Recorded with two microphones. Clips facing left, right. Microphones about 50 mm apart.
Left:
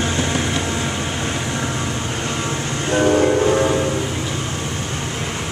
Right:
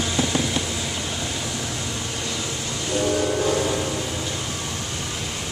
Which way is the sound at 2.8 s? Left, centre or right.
Left.